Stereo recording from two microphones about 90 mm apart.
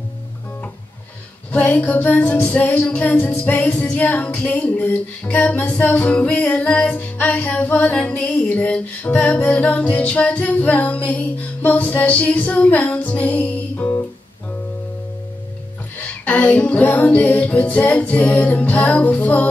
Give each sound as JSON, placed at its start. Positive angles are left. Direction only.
{"t": 1.5, "sound": "music", "side_deg": 15}
{"t": 16.0, "sound": "music", "side_deg": 15}